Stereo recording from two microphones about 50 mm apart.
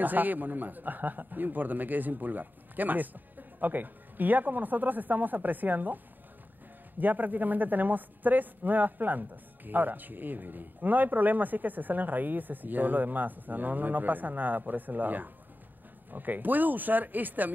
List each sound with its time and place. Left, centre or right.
0.0 s speech: right
7.0 s speech: right